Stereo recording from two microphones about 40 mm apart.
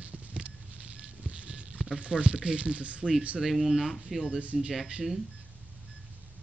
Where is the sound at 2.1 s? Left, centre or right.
Right.